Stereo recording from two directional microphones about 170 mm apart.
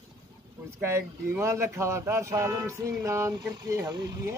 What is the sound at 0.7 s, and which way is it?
Speech, 15° right (ahead or behind).